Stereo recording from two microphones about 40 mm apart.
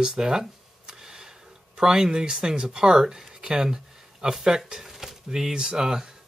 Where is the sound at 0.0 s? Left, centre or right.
Centre.